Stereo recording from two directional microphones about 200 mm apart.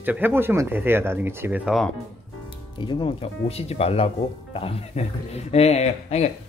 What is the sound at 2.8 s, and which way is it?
Speech, 25° left (ahead or behind).